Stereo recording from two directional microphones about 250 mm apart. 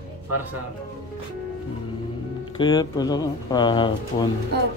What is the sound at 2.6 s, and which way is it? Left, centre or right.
Speech, centre.